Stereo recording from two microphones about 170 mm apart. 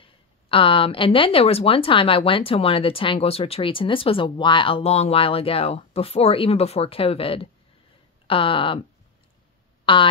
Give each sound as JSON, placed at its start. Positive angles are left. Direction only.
{"t": 0.0, "sound": "speech", "side_deg": 30}
{"t": 9.9, "sound": "speech", "side_deg": 30}